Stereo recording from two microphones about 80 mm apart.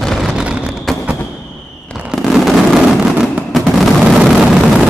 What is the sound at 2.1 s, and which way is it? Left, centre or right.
Fireworks, centre.